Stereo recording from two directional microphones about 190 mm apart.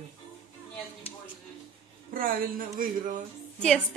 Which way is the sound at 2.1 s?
50° right (ahead or behind).